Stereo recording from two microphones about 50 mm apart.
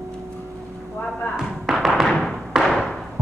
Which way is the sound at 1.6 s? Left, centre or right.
Centre.